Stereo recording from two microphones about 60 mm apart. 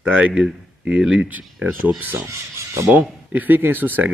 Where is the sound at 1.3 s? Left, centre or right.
Right.